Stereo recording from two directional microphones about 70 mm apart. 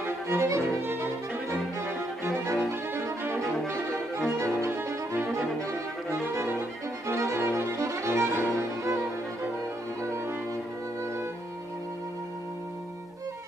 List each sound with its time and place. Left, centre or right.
0.4 s violin: right
10.0 s violin: right